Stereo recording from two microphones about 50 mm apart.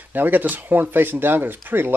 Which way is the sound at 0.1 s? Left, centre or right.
Right.